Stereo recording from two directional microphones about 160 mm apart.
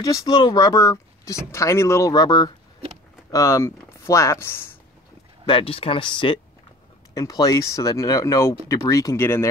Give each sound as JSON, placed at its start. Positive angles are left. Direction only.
{"t": 0.0, "sound": "speech", "side_deg": 20}
{"t": 5.5, "sound": "speech", "side_deg": 35}